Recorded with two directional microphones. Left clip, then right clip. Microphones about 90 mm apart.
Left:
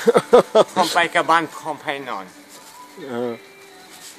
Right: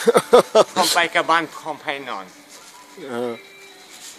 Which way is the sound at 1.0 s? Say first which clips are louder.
Left 3 dB; 5° left (ahead or behind).